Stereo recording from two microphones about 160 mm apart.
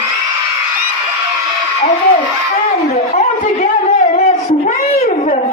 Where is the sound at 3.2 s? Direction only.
45° left (ahead or behind).